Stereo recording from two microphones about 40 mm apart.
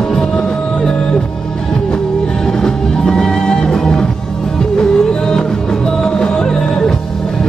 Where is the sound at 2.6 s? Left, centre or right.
Centre.